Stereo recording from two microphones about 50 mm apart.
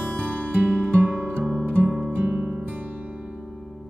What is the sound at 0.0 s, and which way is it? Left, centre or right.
Music, centre.